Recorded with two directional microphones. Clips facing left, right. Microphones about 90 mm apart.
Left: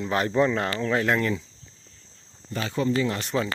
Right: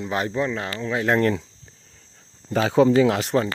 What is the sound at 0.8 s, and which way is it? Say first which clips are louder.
Speech: right 1 dB; 10° right (ahead or behind).